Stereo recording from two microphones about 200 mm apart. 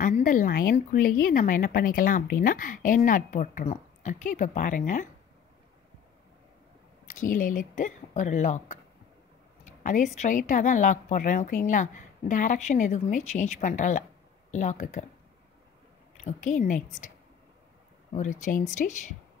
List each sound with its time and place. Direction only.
0.0 s a woman's voice: 40° left (ahead or behind)
7.1 s a woman's voice: 40° left (ahead or behind)
16.3 s a woman's voice: 40° left (ahead or behind)
18.1 s a woman's voice: 40° left (ahead or behind)